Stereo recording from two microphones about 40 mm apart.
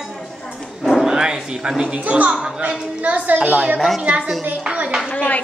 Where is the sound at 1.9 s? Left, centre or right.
Right.